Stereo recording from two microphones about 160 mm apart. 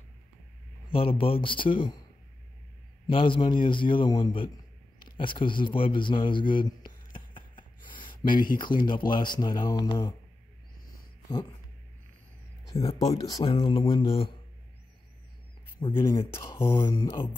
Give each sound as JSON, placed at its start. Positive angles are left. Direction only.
{"t": 0.9, "sound": "a man's voice", "side_deg": 35}
{"t": 3.1, "sound": "a man's voice", "side_deg": 35}
{"t": 4.9, "sound": "a sound", "side_deg": 30}
{"t": 8.5, "sound": "speech", "side_deg": 30}
{"t": 12.6, "sound": "speech", "side_deg": 25}
{"t": 15.8, "sound": "a man's voice", "side_deg": 30}